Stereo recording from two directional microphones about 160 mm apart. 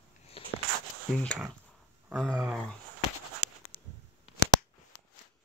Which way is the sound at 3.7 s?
35° left (ahead or behind).